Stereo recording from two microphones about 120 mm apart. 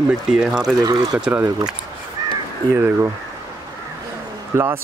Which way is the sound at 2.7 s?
20° right (ahead or behind).